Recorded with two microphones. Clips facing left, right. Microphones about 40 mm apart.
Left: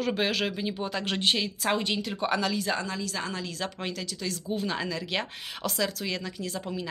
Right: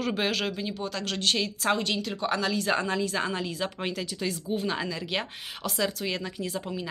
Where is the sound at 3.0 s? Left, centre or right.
Right; by 6.1 s centre.